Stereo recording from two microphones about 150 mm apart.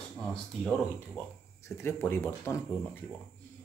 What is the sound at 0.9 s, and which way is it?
Speech, 15° left (ahead or behind).